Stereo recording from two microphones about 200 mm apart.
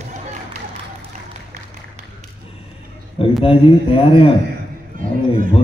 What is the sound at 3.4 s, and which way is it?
Speech, 25° left (ahead or behind).